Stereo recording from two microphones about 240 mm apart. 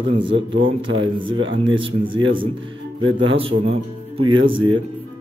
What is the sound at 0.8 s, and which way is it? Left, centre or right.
A man's voice, right.